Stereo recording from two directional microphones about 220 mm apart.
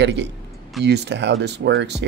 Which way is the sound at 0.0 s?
50° right (ahead or behind).